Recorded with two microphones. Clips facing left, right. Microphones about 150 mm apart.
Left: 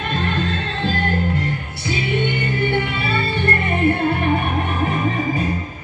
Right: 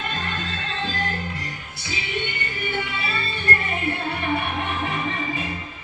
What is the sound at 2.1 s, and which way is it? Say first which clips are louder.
Music: left 8 dB; 60° left (ahead or behind).